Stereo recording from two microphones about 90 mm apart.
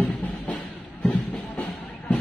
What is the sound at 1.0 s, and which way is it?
Music, 5° left (ahead or behind).